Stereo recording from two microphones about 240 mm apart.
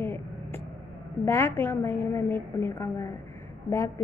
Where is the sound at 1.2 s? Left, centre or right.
Centre.